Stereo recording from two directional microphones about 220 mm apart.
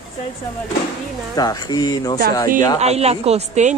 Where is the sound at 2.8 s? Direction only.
30° right (ahead or behind).